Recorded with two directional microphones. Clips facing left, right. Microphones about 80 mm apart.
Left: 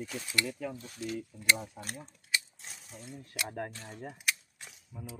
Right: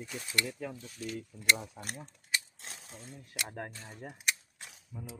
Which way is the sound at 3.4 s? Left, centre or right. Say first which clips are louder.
Left 3 dB; centre.